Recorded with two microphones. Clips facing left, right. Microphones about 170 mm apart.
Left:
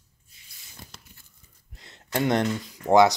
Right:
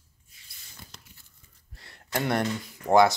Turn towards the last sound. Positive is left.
turn(degrees=20)  # may be behind; listen again after turning